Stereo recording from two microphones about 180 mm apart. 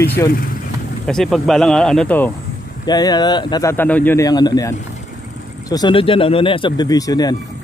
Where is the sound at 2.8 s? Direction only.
20° left (ahead or behind).